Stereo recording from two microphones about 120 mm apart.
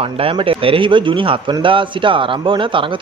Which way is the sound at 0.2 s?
50° right (ahead or behind).